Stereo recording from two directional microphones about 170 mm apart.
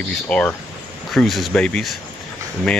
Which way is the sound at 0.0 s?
5° left (ahead or behind).